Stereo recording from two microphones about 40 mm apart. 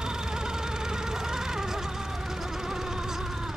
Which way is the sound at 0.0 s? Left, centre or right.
Centre.